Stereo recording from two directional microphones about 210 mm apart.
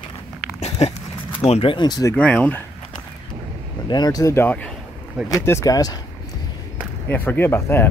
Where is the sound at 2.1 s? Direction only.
5° left (ahead or behind).